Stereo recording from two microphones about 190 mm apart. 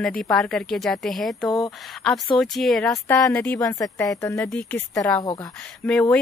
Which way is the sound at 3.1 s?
15° left (ahead or behind).